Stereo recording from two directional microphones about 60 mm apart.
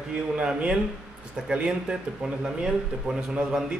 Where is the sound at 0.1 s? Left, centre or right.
Centre.